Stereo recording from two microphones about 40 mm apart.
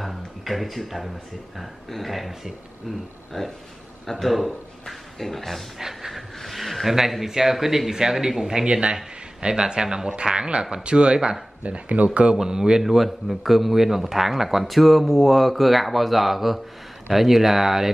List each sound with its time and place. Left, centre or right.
0.0 s music: centre
1.6 s a man's voice: centre
5.8 s a sound: centre
6.4 s speech: centre
8.6 s speech: right
11.6 s speech: right
12.4 s speech: centre
12.8 s a man's voice: centre